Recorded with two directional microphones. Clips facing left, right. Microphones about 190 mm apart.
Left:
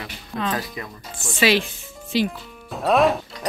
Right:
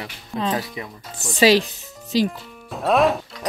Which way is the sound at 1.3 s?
40° right (ahead or behind).